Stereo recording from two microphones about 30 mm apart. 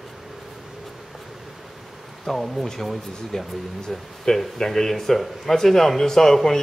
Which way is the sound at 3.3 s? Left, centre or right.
Centre.